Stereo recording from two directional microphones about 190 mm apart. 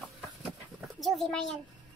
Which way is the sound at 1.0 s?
Centre (ahead or behind).